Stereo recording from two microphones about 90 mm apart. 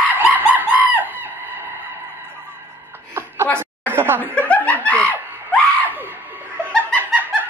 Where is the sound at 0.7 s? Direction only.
20° right (ahead or behind).